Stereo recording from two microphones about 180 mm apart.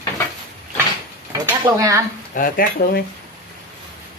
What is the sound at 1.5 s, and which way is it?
Speech, 15° right (ahead or behind).